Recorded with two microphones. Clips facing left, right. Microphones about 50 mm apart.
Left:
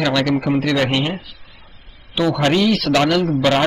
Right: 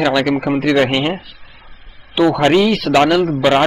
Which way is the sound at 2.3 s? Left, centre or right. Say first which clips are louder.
Right 1 dB; right.